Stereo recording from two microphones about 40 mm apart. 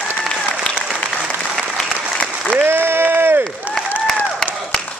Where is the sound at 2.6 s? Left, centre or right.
Right.